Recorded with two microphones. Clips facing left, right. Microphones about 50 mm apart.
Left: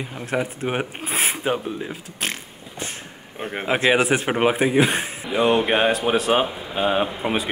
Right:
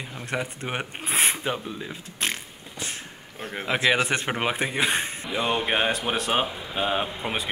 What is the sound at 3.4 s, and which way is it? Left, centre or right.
Speech, left.